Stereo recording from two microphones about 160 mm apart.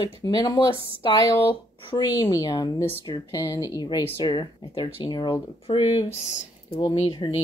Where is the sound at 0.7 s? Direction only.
35° right (ahead or behind).